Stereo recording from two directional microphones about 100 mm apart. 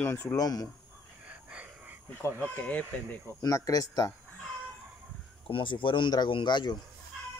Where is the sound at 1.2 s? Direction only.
10° right (ahead or behind).